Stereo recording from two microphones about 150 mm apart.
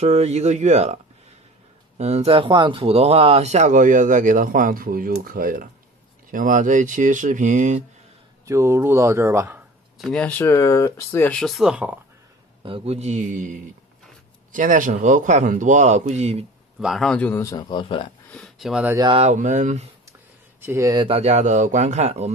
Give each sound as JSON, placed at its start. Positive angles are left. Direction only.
{"t": 0.0, "sound": "speech", "side_deg": -45}
{"t": 2.0, "sound": "speech", "side_deg": -45}
{"t": 8.5, "sound": "speech", "side_deg": -20}
{"t": 9.9, "sound": "speech", "side_deg": 5}
{"t": 12.6, "sound": "speech", "side_deg": -40}
{"t": 16.8, "sound": "speech", "side_deg": 0}
{"t": 18.3, "sound": "a sound", "side_deg": 5}
{"t": 18.7, "sound": "speech", "side_deg": -5}
{"t": 19.1, "sound": "speech", "side_deg": -50}
{"t": 20.6, "sound": "speech", "side_deg": -15}
{"t": 20.9, "sound": "speech", "side_deg": -35}